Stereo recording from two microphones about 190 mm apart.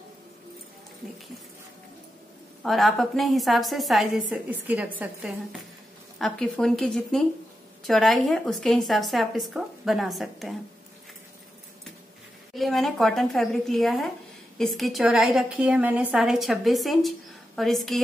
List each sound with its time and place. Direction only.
2.6 s a woman's voice: centre (ahead or behind)
12.5 s a woman's voice: centre (ahead or behind)